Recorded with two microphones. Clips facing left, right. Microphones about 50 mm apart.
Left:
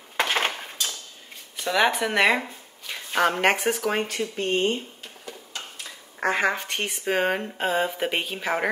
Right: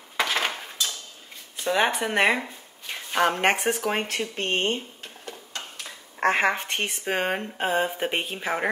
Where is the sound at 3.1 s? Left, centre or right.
Centre.